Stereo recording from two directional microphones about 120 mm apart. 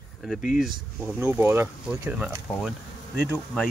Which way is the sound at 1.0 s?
15° right (ahead or behind).